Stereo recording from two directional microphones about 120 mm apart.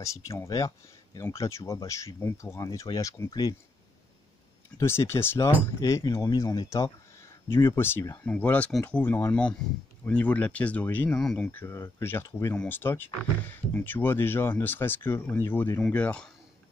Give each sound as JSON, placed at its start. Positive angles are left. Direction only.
{"t": 0.0, "sound": "speech", "side_deg": 25}
{"t": 4.7, "sound": "speech", "side_deg": 20}